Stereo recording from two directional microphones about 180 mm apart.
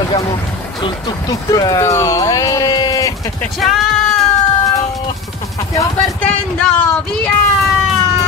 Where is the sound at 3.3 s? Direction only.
Centre (ahead or behind).